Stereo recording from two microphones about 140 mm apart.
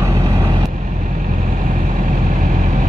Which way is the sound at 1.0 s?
70° right (ahead or behind).